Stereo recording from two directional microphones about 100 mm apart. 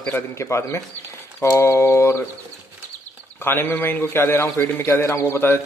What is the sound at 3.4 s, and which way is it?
Speech, 20° left (ahead or behind).